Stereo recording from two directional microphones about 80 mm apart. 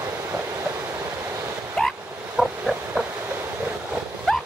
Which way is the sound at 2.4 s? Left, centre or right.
Centre.